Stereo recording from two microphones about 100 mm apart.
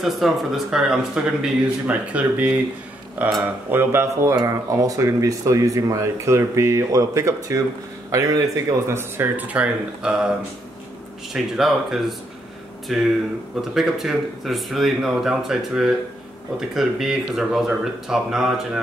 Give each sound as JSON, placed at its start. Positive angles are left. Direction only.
{"t": 0.0, "sound": "a man's voice", "side_deg": 0}
{"t": 11.3, "sound": "speech", "side_deg": -5}